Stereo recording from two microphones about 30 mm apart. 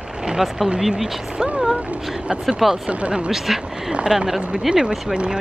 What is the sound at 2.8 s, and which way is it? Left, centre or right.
Speech, right.